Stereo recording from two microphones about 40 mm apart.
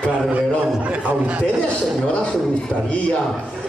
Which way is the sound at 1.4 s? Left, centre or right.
Left.